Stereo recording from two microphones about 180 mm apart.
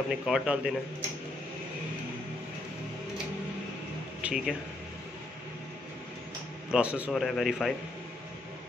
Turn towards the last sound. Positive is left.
turn(degrees=0)  # may be behind; listen again after turning